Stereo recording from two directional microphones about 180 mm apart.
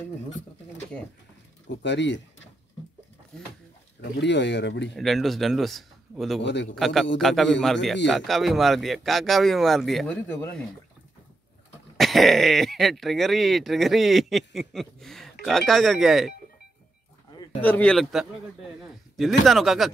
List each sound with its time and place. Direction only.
1.7 s speech: 80° left
4.0 s speech: 75° left (ahead or behind)
4.9 s speech: centre (ahead or behind)
6.4 s speech: 75° left (ahead or behind)
6.7 s speech: centre (ahead or behind)
12.0 s speech: centre (ahead or behind)
17.6 s a man's voice: 10° left (ahead or behind)